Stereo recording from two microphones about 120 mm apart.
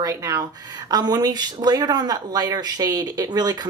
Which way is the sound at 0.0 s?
30° right (ahead or behind).